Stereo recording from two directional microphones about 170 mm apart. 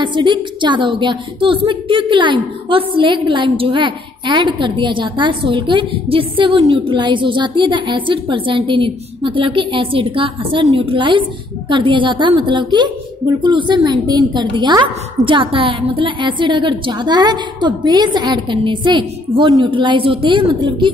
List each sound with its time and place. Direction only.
0.0 s a woman's voice: 25° right (ahead or behind)